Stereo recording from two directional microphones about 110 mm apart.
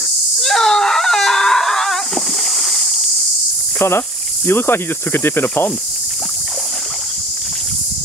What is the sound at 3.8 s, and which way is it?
Cricket, 20° left (ahead or behind).